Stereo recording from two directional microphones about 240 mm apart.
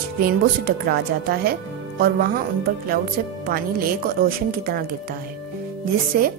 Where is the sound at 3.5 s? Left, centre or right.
Right.